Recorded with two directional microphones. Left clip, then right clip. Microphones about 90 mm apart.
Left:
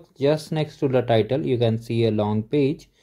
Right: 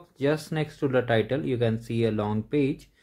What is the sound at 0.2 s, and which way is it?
Speech, 30° left (ahead or behind).